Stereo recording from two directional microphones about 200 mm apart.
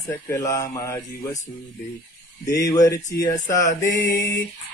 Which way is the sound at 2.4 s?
15° left (ahead or behind).